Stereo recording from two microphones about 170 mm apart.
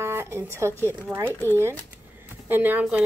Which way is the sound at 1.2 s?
10° left (ahead or behind).